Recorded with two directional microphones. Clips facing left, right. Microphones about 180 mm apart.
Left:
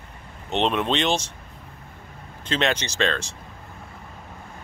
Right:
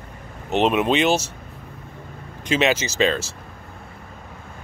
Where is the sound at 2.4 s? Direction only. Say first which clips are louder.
Right 4 dB; 10° right (ahead or behind).